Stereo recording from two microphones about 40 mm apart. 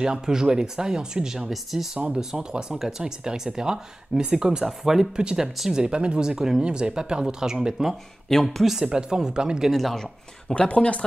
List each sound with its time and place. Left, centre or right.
0.0 s speech: centre
1.5 s speech: centre
2.1 s speech: centre
5.2 s speech: right
6.2 s speech: centre
8.3 s speech: centre
8.8 s speech: centre
9.7 s speech: centre
10.5 s speech: left